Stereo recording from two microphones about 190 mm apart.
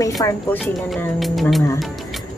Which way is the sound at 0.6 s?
Centre (ahead or behind).